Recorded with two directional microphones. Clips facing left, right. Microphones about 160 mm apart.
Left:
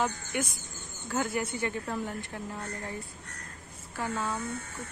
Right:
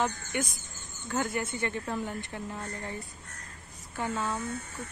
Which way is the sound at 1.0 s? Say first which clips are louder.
Even; 5° left (ahead or behind).